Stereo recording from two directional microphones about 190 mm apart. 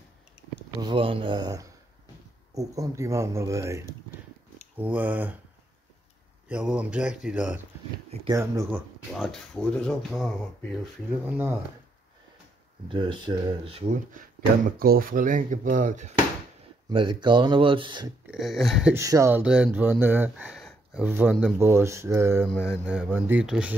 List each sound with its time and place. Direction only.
0.7 s speech: 25° right (ahead or behind); by 5.4 s 10° right (ahead or behind)
6.5 s speech: 5° right (ahead or behind)
9.1 s speech: centre (ahead or behind)
11.2 s speech: 10° right (ahead or behind)
12.8 s speech: 25° right (ahead or behind)
14.8 s speech: 50° right (ahead or behind)
16.9 s speech: 25° right (ahead or behind)
18.3 s speech: centre (ahead or behind)
18.9 s speech: 15° right (ahead or behind)
22.5 s speech: centre (ahead or behind)